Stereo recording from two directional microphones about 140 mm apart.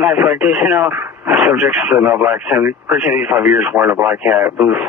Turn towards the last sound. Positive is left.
turn(degrees=-10)  # may be behind; listen again after turning